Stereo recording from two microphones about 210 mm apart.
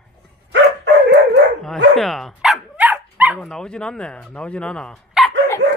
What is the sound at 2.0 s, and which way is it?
Dog, centre (ahead or behind).